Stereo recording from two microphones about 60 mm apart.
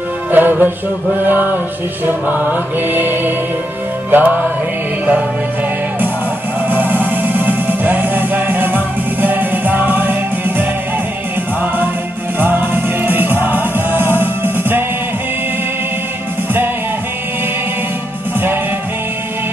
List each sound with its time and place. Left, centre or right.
0.3 s music: right
6.7 s music: right
12.4 s music: right